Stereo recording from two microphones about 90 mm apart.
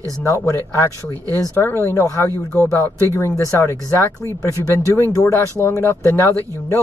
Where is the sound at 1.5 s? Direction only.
25° left (ahead or behind).